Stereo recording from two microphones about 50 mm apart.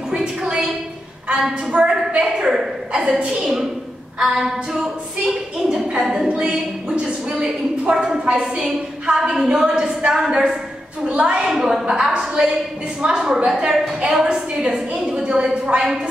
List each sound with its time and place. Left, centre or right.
0.1 s a sound: centre
1.3 s a woman's voice: centre
11.4 s a woman's voice: centre